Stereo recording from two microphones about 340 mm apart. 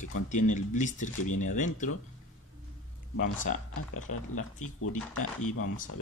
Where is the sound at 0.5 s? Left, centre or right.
Left.